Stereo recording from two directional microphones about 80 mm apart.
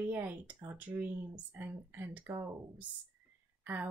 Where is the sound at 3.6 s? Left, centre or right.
Right.